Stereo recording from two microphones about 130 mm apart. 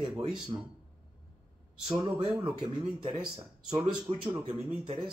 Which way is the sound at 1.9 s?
35° right (ahead or behind).